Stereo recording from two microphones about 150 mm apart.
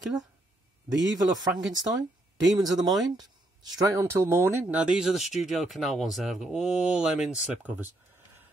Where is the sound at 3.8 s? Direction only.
20° right (ahead or behind).